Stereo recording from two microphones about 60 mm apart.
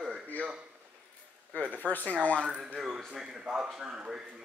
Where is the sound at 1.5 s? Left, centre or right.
Left.